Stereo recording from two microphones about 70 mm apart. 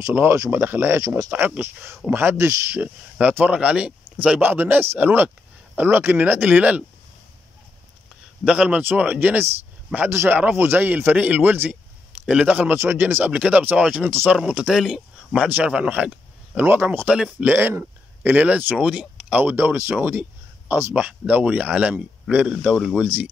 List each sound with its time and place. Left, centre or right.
0.1 s speech: right
2.8 s speech: right
8.5 s speech: centre
9.9 s speech: right
12.3 s speech: centre
12.7 s speech: right; by 15.0 s centre
15.3 s speech: right
17.4 s speech: right
18.3 s speech: right
19.4 s speech: right; by 22.8 s centre